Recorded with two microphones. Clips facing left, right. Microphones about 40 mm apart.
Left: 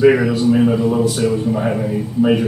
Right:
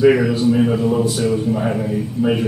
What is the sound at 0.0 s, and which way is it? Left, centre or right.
Speech, centre.